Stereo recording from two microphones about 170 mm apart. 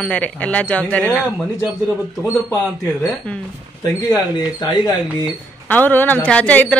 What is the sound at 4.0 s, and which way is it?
Speech, 25° left (ahead or behind).